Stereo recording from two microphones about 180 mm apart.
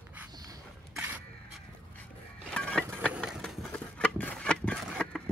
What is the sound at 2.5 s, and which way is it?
Music, 5° left (ahead or behind).